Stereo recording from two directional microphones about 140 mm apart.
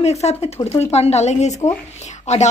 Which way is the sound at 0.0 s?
50° left (ahead or behind).